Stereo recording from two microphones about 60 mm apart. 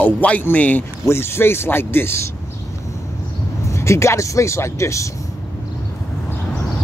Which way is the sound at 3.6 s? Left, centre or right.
Left.